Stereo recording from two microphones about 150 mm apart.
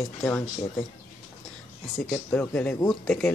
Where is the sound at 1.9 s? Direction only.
5° left (ahead or behind).